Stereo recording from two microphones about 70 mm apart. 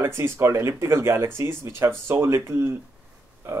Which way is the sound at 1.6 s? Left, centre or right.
Right.